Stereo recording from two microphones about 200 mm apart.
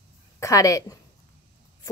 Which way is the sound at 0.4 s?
15° left (ahead or behind).